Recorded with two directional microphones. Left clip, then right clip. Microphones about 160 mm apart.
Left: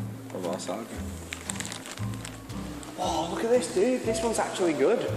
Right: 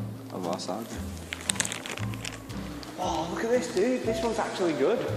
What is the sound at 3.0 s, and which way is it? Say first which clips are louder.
Speech: left 1 dB; 25° left (ahead or behind).